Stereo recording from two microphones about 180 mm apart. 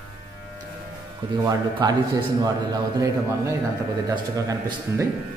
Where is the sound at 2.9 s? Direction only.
20° right (ahead or behind).